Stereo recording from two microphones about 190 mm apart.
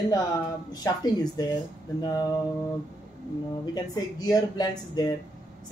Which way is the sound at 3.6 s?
20° left (ahead or behind).